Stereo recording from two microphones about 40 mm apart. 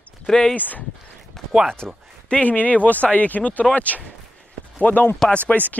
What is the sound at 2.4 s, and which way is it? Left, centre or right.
Speech, left.